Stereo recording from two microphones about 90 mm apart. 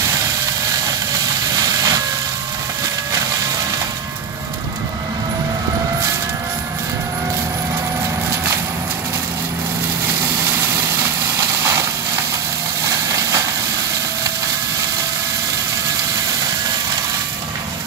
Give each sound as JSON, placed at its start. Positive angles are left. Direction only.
{"t": 1.5, "sound": "vehicle", "side_deg": -45}
{"t": 10.5, "sound": "vehicle", "side_deg": -30}